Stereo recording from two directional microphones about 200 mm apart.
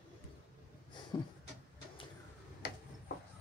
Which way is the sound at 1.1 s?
20° left (ahead or behind).